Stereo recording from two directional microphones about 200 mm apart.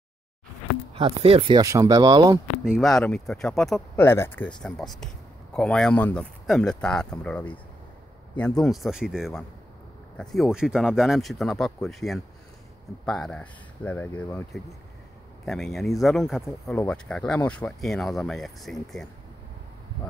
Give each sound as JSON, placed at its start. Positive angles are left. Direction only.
{"t": 1.2, "sound": "speech", "side_deg": -30}
{"t": 2.6, "sound": "speech", "side_deg": 0}